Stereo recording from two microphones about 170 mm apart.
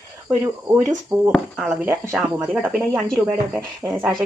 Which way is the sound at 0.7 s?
10° right (ahead or behind).